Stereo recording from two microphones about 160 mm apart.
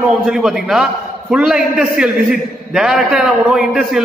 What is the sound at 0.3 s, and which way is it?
A man's voice, 5° right (ahead or behind).